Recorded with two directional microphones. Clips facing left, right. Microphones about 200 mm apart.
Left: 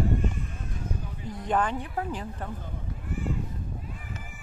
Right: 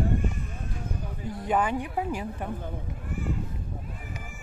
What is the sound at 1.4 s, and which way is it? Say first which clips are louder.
A woman's voice: right 1 dB; 10° right (ahead or behind).